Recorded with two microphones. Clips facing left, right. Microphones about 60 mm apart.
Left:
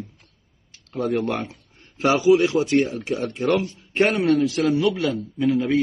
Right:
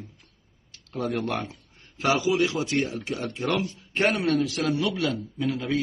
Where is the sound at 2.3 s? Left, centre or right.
Left.